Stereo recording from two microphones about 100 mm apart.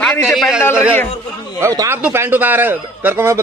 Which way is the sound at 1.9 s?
15° right (ahead or behind).